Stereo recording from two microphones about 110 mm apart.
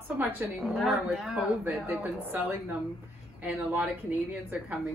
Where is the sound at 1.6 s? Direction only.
20° right (ahead or behind).